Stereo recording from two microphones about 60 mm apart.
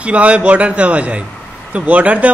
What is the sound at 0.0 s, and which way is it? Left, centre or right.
Speech, right.